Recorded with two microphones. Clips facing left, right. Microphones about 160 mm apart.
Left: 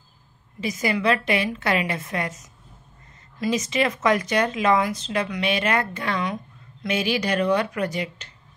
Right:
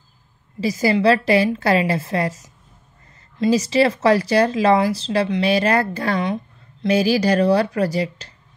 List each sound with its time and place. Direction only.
0.6 s speech: 35° right (ahead or behind)